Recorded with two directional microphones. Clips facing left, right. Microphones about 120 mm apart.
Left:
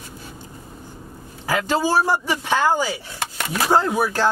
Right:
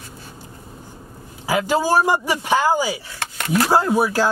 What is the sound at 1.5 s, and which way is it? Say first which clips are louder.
Speech: right 2 dB; 10° right (ahead or behind).